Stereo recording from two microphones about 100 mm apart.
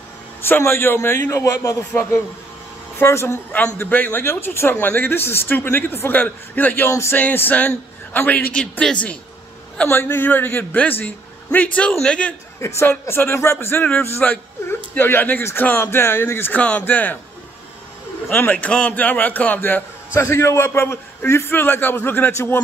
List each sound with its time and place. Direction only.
0.4 s speech: 25° left (ahead or behind)
7.2 s a man's voice: 15° left (ahead or behind)
12.5 s a woman's voice: 25° left (ahead or behind)
18.3 s a man's voice: 15° left (ahead or behind)
20.2 s speech: 30° left (ahead or behind)